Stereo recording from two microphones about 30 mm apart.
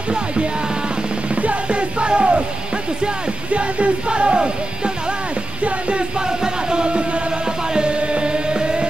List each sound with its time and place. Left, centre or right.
1.3 s music: right
3.5 s music: right
4.1 s music: right
5.6 s music: right
6.1 s music: right
7.4 s music: right